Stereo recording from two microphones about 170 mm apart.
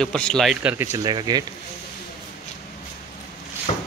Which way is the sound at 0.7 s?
15° right (ahead or behind).